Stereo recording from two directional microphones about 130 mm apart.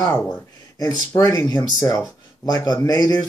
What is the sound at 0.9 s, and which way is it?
Speech, 25° left (ahead or behind).